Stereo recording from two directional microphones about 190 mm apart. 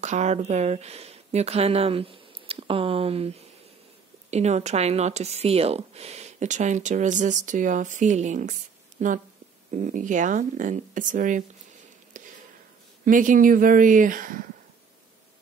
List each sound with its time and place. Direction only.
0.0 s speech: 35° right (ahead or behind)
13.0 s speech: 45° right (ahead or behind)